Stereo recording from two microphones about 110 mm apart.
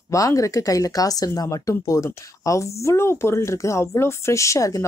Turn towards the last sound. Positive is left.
turn(degrees=30)  # may be behind; listen again after turning